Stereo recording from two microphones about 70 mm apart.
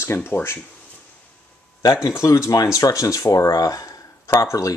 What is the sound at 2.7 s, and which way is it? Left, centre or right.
Speech, left.